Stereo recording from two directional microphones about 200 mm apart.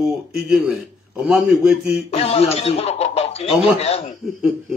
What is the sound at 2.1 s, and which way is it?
A man's voice, 30° left (ahead or behind).